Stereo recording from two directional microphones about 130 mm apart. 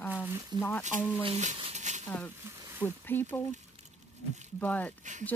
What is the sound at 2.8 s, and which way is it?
Speech, 15° left (ahead or behind).